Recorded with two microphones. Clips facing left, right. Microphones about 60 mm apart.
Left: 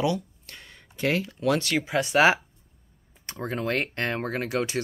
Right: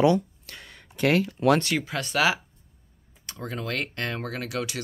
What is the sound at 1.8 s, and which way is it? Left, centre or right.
Speech, centre.